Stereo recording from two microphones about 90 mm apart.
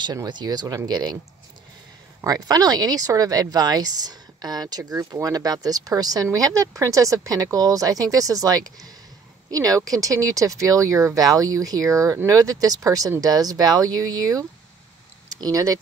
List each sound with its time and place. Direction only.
0.0 s speech: 50° right (ahead or behind)
2.2 s speech: 45° right (ahead or behind)
15.4 s speech: 40° right (ahead or behind)